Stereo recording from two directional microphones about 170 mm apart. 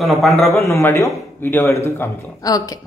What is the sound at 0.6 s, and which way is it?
Speech, 15° left (ahead or behind).